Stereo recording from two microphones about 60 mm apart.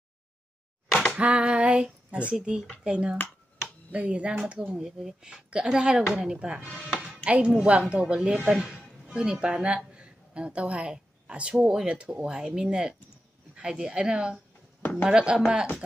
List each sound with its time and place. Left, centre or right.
0.8 s a sound: centre
1.1 s female singing: centre
2.3 s speech: centre
6.9 s music: centre
7.2 s a woman's voice: centre